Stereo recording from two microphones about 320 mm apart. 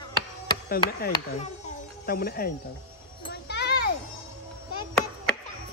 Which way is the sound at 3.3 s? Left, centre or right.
Left.